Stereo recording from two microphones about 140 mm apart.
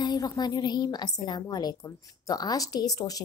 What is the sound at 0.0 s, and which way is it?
Speech, 30° left (ahead or behind).